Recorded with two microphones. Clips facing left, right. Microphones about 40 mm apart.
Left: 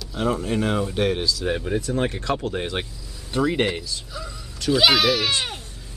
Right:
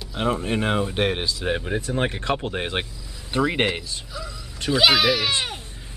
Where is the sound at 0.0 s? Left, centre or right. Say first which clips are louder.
Even; right.